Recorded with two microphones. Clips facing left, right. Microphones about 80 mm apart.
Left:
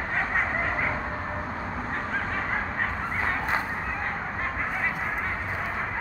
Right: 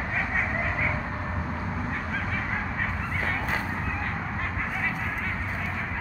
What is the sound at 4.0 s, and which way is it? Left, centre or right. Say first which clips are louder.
Honk: left 1 dB; centre.